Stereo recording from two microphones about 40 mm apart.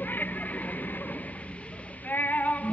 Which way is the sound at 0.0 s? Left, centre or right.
Left.